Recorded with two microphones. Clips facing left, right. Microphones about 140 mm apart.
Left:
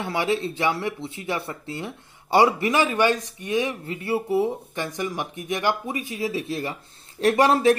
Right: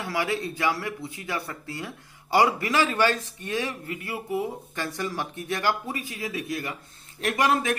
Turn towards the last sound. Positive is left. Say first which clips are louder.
# left 6 dB
turn(degrees=35)  # may be behind; listen again after turning